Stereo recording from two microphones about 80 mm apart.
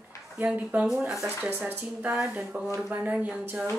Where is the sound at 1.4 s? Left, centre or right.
Right.